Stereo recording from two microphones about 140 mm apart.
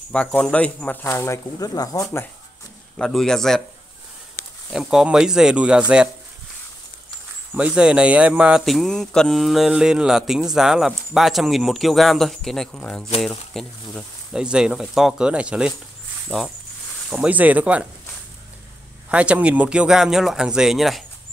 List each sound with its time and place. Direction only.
0.1 s speech: 10° left (ahead or behind)
1.0 s speech: 20° left (ahead or behind)
3.0 s speech: 5° left (ahead or behind)
4.7 s speech: 5° right (ahead or behind)
7.5 s speech: 5° right (ahead or behind)
19.0 s speech: 10° right (ahead or behind)